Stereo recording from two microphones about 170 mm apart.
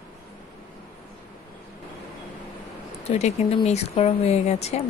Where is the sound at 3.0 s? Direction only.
40° left (ahead or behind).